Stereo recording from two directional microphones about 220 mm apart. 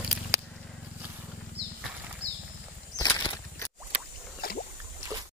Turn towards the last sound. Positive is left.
turn(degrees=45)  # may be behind; listen again after turning